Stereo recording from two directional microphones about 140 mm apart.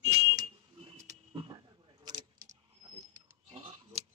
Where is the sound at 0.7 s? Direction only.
40° right (ahead or behind).